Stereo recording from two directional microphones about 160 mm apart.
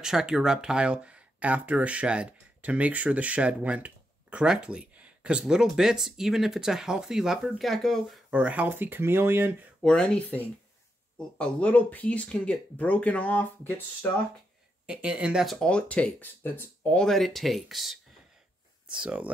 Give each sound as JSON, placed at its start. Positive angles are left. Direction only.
{"t": 0.0, "sound": "speech", "side_deg": -5}
{"t": 9.8, "sound": "speech", "side_deg": 5}
{"t": 14.9, "sound": "speech", "side_deg": -5}